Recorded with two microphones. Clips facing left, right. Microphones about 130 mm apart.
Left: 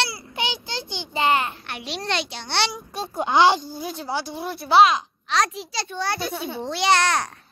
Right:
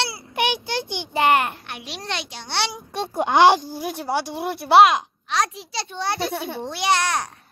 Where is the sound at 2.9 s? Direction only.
70° right (ahead or behind).